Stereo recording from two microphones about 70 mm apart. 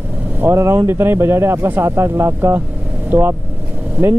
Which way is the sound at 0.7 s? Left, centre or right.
Right.